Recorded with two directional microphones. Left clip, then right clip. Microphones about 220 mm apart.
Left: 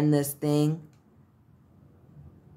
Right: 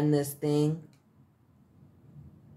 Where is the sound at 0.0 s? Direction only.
25° left (ahead or behind).